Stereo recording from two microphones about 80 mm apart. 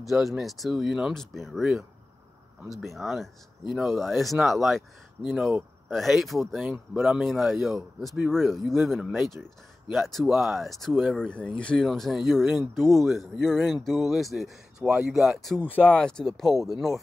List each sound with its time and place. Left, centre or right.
0.1 s speech: centre
11.8 s speech: centre
15.6 s speech: centre
16.0 s speech: centre